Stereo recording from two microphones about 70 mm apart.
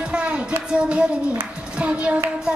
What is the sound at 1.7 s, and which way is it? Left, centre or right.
Child singing, centre.